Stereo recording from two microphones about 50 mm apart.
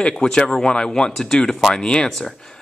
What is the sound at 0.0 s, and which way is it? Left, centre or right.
Speech, centre.